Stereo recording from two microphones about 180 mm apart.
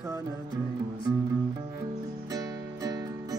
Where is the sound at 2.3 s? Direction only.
20° right (ahead or behind).